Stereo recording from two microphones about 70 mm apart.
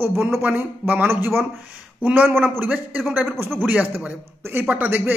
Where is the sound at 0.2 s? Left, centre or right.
Right.